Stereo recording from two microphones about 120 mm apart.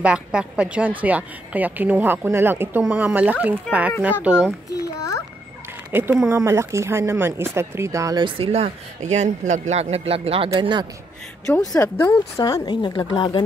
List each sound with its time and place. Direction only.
0.0 s a woman's voice: 10° right (ahead or behind)
4.7 s a sound: 30° left (ahead or behind)
5.9 s speech: 15° right (ahead or behind)
8.2 s speech: 50° right (ahead or behind)
10.6 s a man's voice: 40° right (ahead or behind)
12.0 s speech: 25° left (ahead or behind)